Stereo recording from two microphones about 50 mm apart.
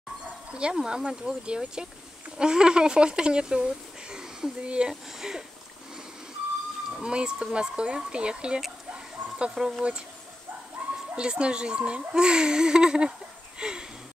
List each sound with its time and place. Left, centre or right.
0.5 s speech: right
7.0 s speech: centre
9.6 s speech: centre
10.8 s a sound: right
11.1 s speech: right
13.6 s a sound: centre